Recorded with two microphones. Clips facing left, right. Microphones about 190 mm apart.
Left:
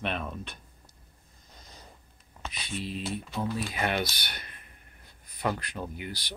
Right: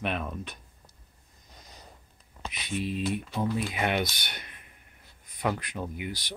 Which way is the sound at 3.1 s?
15° right (ahead or behind).